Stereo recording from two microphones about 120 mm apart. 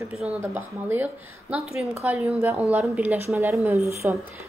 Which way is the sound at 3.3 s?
20° right (ahead or behind).